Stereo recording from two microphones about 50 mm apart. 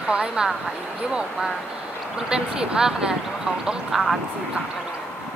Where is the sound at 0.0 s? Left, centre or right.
Right.